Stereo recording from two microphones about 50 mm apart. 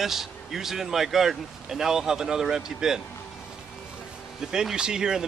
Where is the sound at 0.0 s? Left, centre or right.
Centre.